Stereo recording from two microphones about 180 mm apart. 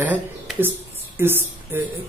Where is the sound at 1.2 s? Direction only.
10° right (ahead or behind).